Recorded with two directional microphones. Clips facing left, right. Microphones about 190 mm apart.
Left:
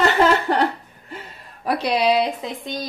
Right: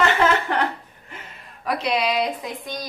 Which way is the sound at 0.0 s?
35° left (ahead or behind).